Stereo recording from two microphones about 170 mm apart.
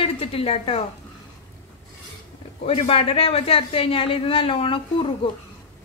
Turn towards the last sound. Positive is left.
turn(degrees=30)  # may be behind; listen again after turning